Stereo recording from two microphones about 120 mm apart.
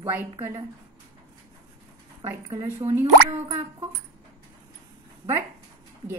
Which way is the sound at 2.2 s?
25° right (ahead or behind).